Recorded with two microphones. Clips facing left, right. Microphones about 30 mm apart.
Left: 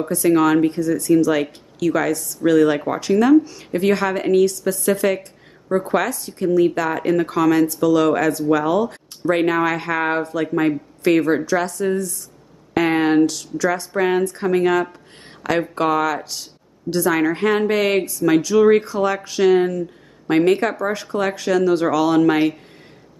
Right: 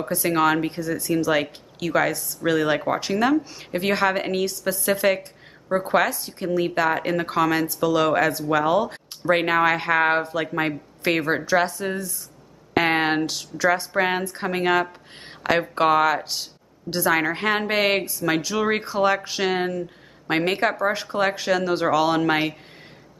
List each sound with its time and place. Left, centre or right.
0.1 s a woman's voice: centre